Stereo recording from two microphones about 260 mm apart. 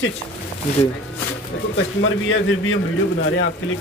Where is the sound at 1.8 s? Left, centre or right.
Left.